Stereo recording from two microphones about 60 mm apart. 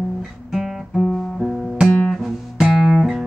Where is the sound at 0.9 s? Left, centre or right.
Centre.